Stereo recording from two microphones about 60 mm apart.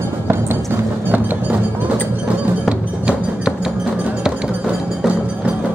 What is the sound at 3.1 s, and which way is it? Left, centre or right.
Music, centre.